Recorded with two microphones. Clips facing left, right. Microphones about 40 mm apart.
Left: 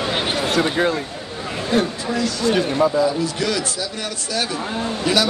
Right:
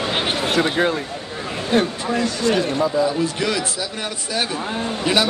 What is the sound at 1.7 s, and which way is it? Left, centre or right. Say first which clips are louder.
Speech: right 1 dB; right.